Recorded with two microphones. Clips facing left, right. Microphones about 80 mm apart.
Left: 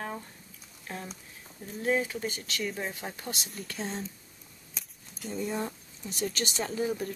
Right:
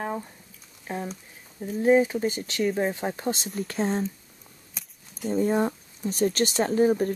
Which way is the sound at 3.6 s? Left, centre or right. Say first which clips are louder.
Right 9 dB; right.